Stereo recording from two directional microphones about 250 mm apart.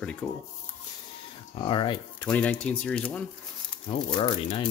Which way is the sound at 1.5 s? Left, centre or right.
Left.